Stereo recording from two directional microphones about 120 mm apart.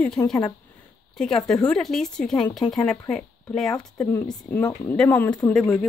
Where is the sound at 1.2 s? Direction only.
5° left (ahead or behind).